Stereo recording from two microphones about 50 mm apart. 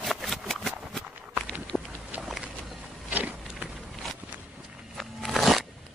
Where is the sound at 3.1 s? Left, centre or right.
Right.